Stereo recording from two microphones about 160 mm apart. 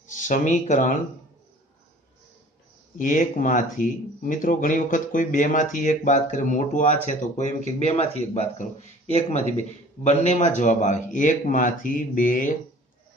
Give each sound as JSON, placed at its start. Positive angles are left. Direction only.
{"t": 0.1, "sound": "speech", "side_deg": 50}
{"t": 3.0, "sound": "speech", "side_deg": 55}